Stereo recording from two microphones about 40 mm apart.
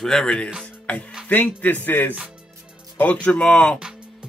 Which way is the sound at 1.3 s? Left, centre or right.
Left.